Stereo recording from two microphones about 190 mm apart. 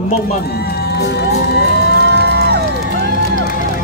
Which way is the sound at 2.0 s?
65° right (ahead or behind).